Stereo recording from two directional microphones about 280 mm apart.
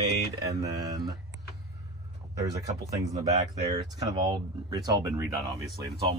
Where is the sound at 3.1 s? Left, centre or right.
Centre.